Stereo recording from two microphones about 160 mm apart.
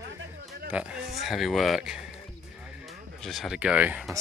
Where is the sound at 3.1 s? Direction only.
Centre (ahead or behind).